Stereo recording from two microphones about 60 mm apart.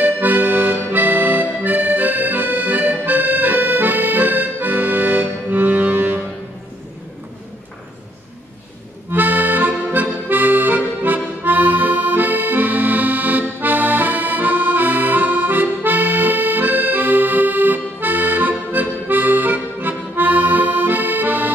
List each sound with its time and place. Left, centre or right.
0.0 s accordion: right
9.1 s accordion: right